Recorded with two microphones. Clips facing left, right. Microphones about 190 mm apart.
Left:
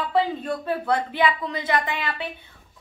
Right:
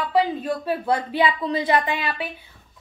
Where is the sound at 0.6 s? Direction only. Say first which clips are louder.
Even; 20° right (ahead or behind).